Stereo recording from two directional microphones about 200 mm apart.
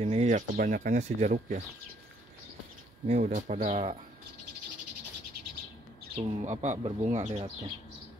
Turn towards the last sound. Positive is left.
turn(degrees=-35)  # may be behind; listen again after turning